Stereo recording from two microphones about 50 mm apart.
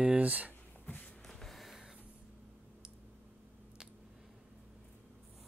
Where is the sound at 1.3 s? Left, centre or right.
Centre.